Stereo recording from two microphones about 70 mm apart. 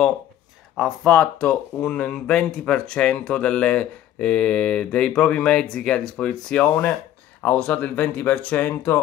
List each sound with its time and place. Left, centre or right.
1.0 s speech: centre